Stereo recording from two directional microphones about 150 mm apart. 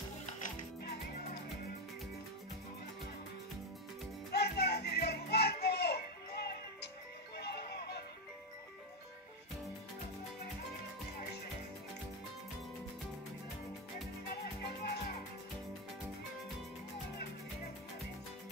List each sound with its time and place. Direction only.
0.3 s music: 60° left (ahead or behind)
4.4 s music: 90° left
7.3 s music: 90° left
14.4 s music: 90° left